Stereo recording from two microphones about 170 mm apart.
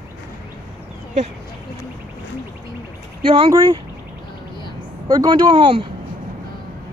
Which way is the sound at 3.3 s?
30° right (ahead or behind).